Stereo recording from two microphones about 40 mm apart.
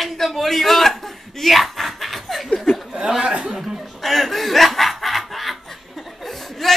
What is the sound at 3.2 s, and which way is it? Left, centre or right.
Chuckle, right.